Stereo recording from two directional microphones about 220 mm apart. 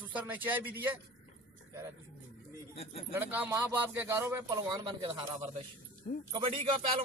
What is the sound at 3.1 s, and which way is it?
Speech, 10° right (ahead or behind).